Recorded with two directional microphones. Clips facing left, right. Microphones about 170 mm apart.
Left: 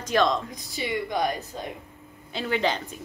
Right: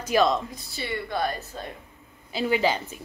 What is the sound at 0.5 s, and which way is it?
Speech, 15° left (ahead or behind).